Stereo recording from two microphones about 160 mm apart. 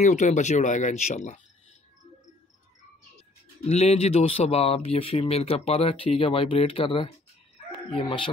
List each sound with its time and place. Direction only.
0.0 s speech: 50° left (ahead or behind)
3.6 s speech: 40° left (ahead or behind)